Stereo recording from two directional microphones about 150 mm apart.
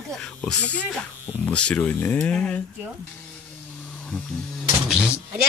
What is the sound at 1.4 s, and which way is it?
Speech, 5° left (ahead or behind).